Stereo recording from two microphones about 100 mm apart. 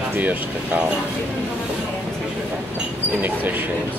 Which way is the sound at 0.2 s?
15° right (ahead or behind).